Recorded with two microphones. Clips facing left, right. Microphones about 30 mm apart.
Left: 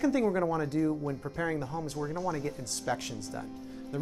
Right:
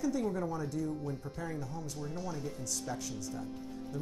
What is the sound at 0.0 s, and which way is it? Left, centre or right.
Speech, left.